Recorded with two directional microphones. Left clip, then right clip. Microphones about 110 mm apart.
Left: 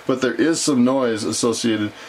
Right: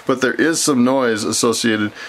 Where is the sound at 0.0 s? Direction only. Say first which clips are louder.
Right 3 dB; 40° right (ahead or behind).